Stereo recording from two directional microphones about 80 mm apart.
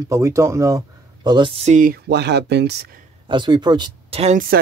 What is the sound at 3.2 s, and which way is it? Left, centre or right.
Speech, right.